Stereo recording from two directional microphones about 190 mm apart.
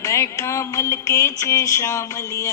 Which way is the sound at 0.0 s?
15° left (ahead or behind).